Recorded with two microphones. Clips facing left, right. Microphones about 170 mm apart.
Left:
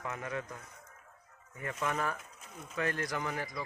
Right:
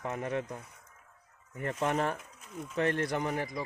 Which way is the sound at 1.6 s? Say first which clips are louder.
Right 4 dB; 30° right (ahead or behind).